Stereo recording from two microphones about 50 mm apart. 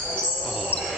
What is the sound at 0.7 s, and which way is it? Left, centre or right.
Cricket, right.